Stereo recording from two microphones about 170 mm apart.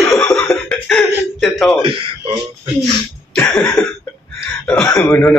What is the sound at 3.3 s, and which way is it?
A man's voice, 5° left (ahead or behind).